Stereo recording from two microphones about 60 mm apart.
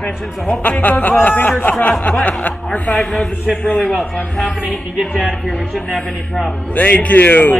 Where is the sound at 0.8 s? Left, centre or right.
Left.